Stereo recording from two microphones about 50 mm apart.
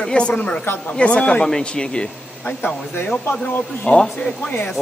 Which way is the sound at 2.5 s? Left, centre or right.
Left.